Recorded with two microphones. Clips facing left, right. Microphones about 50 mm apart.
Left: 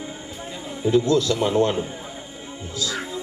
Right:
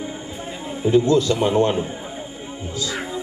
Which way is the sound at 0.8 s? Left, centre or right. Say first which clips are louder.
Right 2 dB; right.